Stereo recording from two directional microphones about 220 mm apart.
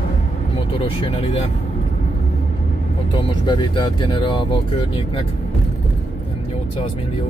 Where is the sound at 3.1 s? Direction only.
20° left (ahead or behind).